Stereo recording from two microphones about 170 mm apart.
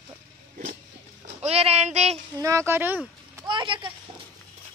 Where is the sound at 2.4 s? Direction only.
15° right (ahead or behind).